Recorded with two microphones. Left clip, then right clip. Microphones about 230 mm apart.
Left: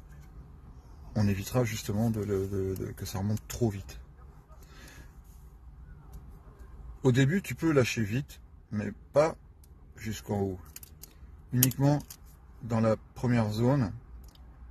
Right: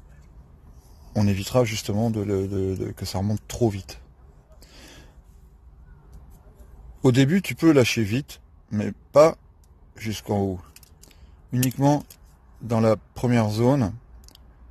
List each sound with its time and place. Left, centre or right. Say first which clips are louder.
1.1 s speech: right 9 dB; right
7.1 s speech: right 7 dB; right
12.6 s speech: right 7 dB; right